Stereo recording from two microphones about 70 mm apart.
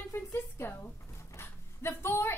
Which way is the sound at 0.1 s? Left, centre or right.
Left.